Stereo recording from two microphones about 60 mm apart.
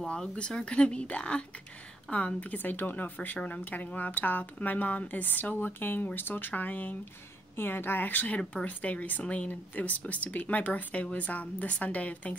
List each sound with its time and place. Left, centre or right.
0.1 s speech: centre; by 3.1 s left
3.2 s speech: left